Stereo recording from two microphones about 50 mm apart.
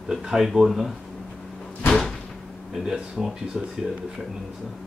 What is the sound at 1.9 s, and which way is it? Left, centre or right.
Slam, centre.